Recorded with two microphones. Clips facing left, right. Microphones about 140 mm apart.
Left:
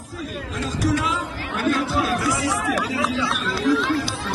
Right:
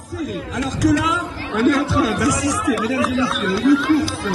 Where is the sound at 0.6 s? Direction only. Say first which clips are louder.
Right 6 dB; 90° right.